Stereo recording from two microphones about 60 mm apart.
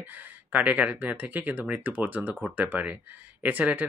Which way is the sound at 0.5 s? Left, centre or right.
Right.